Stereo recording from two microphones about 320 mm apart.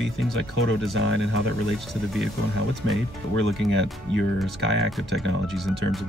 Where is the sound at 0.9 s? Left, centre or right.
Right.